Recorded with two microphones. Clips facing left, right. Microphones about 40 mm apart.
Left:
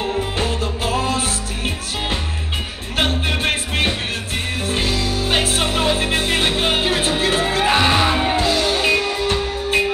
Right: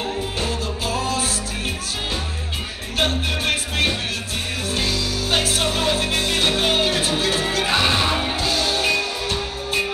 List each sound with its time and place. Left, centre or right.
0.4 s music: left
3.0 s music: left
8.4 s music: left